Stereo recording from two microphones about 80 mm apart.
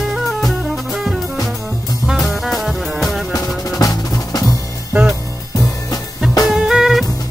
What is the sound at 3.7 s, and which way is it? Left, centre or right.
Drum, left.